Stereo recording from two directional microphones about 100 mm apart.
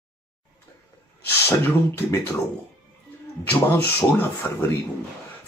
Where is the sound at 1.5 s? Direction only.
25° left (ahead or behind).